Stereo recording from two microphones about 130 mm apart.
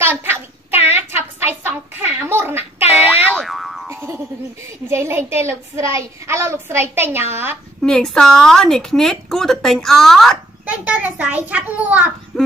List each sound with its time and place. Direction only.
0.0 s a sound: 20° right (ahead or behind)
3.1 s boing: 15° right (ahead or behind)
3.3 s boing: centre (ahead or behind)
3.9 s music: 20° right (ahead or behind)
4.8 s a woman's voice: 20° right (ahead or behind)
7.8 s a woman's voice: 5° left (ahead or behind)
10.7 s a child's voice: 10° right (ahead or behind)